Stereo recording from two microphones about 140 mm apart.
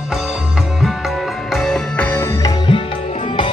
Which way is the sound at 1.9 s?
15° left (ahead or behind).